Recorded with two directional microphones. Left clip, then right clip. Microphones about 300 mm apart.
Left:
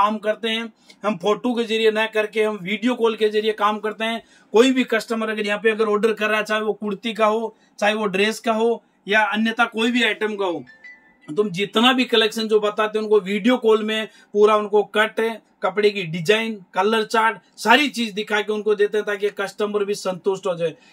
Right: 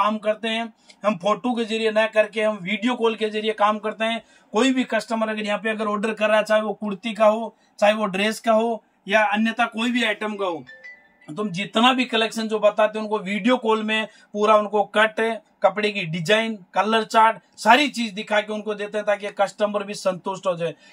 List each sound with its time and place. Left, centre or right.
0.0 s speech: centre